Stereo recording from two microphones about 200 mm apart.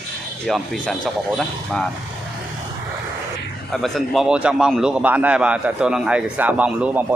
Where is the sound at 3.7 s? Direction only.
Centre (ahead or behind).